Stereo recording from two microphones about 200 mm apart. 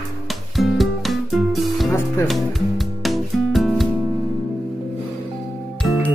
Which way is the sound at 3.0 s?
Centre (ahead or behind).